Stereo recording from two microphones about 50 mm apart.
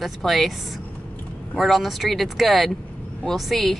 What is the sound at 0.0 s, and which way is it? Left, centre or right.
Speech, centre.